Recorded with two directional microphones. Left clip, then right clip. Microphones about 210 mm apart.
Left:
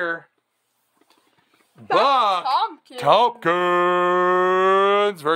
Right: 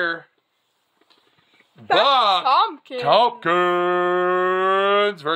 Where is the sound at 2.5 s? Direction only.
50° right (ahead or behind).